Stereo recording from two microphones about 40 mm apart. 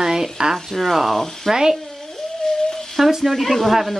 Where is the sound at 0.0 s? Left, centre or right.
Centre.